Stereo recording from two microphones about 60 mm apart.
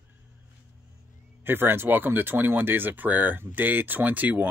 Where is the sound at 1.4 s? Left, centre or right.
Right.